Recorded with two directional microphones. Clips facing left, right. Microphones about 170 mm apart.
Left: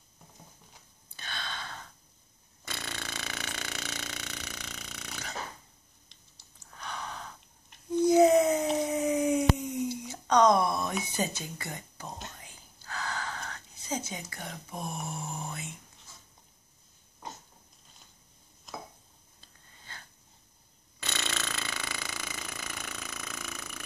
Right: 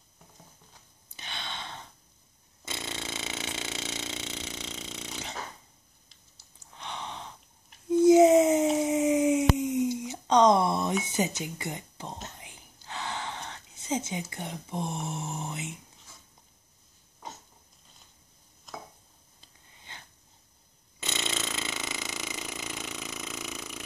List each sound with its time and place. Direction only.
1.1 s gasp: 20° right (ahead or behind)
2.6 s burping: 20° right (ahead or behind)
6.7 s gasp: 25° right (ahead or behind)
8.0 s a sound: 25° right (ahead or behind)
8.8 s dog: 20° right (ahead or behind)
11.1 s speech: 20° right (ahead or behind)
12.4 s whispering: 20° right (ahead or behind)
19.4 s a sound: 20° right (ahead or behind)
21.0 s chainsaw: 20° right (ahead or behind)